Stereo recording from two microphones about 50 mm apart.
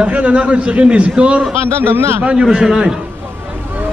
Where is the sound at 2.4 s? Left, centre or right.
Centre.